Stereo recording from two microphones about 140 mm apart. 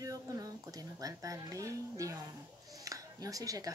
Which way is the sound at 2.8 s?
25° right (ahead or behind).